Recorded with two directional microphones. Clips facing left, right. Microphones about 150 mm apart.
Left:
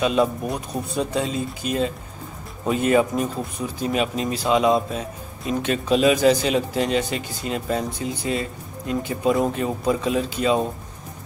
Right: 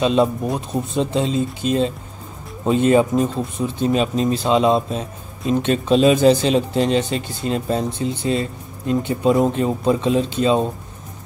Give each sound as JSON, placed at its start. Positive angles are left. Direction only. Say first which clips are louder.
{"t": 0.0, "sound": "speech", "louder": "right 3 dB", "side_deg": -25}